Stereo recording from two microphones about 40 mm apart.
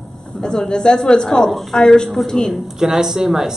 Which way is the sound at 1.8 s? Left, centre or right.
Centre.